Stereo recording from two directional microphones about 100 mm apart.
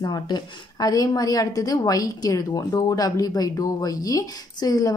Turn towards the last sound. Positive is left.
turn(degrees=35)  # may be behind; listen again after turning